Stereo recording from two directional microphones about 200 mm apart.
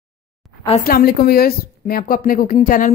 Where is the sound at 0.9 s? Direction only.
50° left (ahead or behind).